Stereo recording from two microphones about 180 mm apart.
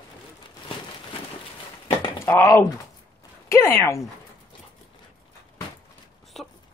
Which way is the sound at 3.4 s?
15° left (ahead or behind).